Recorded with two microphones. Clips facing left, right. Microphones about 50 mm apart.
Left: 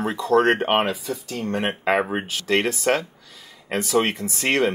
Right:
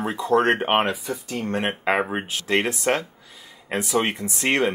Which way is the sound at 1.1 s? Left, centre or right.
Right.